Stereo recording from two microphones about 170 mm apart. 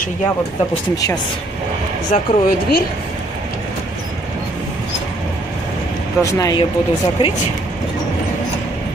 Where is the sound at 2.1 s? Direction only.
55° left (ahead or behind).